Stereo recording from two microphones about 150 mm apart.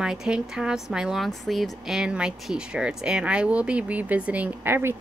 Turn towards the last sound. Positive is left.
turn(degrees=-15)  # may be behind; listen again after turning